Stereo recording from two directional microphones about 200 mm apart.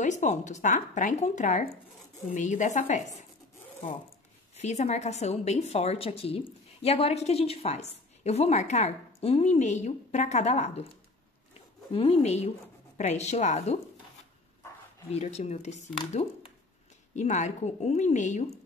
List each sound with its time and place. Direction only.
0.0 s a woman's voice: 35° left (ahead or behind)
4.6 s a woman's voice: 35° left (ahead or behind)
11.9 s a woman's voice: 30° left (ahead or behind)
15.0 s a woman's voice: 35° left (ahead or behind)